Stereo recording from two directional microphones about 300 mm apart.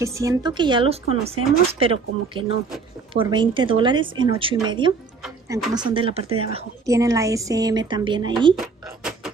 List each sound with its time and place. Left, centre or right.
0.0 s a woman's voice: centre
5.2 s speech: centre
5.8 s a woman's voice: centre
8.5 s a sound: centre